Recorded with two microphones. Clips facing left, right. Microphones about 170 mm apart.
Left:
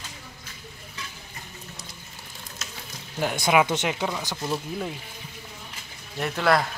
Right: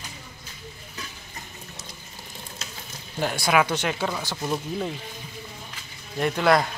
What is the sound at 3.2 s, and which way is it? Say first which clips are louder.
Speech: left 1 dB; 15° left (ahead or behind).